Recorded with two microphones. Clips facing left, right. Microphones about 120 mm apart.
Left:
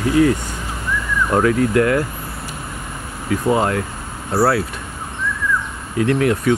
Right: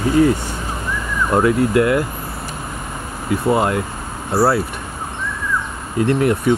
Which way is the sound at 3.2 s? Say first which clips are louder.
Right 1 dB; 5° right (ahead or behind).